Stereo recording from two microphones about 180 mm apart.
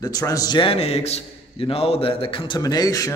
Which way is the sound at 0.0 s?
20° left (ahead or behind).